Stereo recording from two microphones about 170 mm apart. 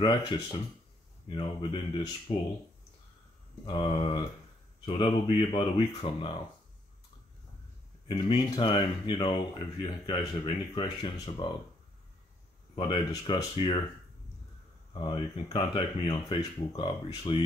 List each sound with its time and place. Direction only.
0.0 s speech: 25° left (ahead or behind)
3.6 s speech: 30° left (ahead or behind)
8.1 s speech: 30° left (ahead or behind)
12.7 s speech: 25° left (ahead or behind)
15.0 s speech: 25° left (ahead or behind)